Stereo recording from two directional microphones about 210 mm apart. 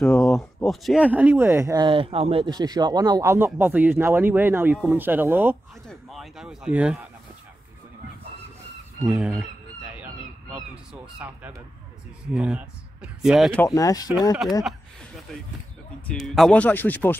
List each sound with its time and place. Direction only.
0.0 s speech: centre (ahead or behind)
9.0 s chicken: centre (ahead or behind)
12.4 s speech: 5° right (ahead or behind)
13.6 s speech: 15° left (ahead or behind)
16.1 s speech: centre (ahead or behind)